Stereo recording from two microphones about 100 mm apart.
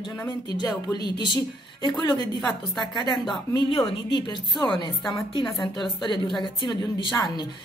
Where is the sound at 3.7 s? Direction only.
60° left (ahead or behind).